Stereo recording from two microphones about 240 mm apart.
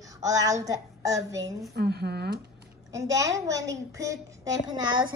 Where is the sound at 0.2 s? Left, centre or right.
Centre.